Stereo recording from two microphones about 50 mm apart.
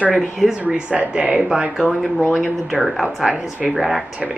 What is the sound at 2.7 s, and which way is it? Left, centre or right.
Speech, centre.